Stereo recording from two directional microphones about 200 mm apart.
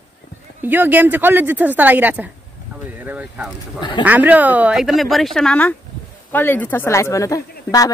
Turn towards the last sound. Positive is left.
turn(degrees=15)  # may be behind; listen again after turning